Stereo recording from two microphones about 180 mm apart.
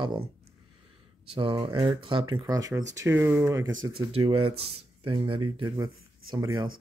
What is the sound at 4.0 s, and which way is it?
Speech, 30° right (ahead or behind).